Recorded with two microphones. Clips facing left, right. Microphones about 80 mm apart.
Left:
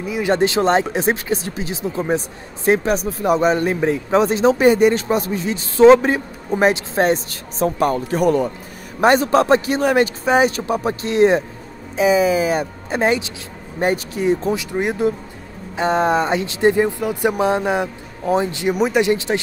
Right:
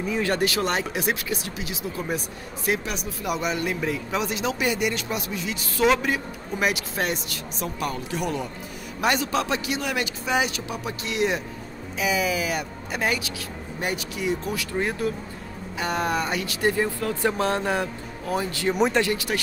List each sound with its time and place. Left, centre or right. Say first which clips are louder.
0.2 s speech: left 9 dB; left
14.5 s speech: left 6 dB; centre